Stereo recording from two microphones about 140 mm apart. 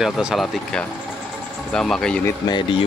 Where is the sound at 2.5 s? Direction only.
35° left (ahead or behind).